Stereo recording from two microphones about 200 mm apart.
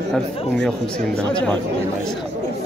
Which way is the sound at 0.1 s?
5° left (ahead or behind).